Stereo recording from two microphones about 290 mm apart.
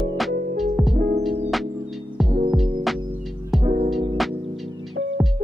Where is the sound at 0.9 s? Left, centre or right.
Right.